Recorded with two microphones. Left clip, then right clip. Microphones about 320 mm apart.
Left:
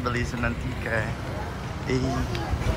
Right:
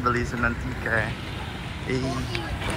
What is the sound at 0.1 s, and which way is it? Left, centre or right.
Speech, centre.